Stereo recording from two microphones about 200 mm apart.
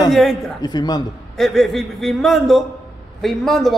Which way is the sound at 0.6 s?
20° left (ahead or behind).